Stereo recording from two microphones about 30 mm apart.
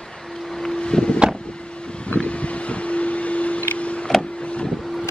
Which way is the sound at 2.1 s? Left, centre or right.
Left.